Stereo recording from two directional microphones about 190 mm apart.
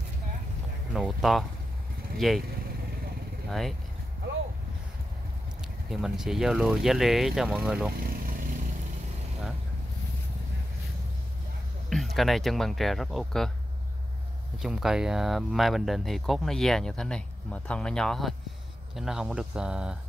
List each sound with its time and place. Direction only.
0.9 s speech: centre (ahead or behind)
3.4 s speech: centre (ahead or behind)
5.6 s speech: centre (ahead or behind)
8.0 s vehicle: 50° right (ahead or behind)
11.9 s speech: centre (ahead or behind)
14.6 s speech: centre (ahead or behind)